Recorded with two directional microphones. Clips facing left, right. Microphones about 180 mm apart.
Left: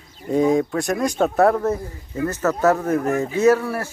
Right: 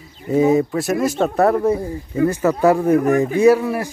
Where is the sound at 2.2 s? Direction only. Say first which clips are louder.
Right 3 dB; 10° right (ahead or behind).